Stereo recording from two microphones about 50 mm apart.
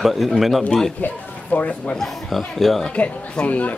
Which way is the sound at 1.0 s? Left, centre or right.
Left.